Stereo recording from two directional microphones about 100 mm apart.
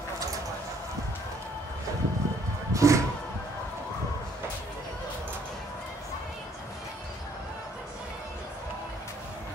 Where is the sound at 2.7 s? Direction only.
30° right (ahead or behind).